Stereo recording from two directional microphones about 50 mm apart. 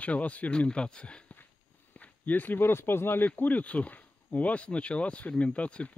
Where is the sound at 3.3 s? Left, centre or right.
Left.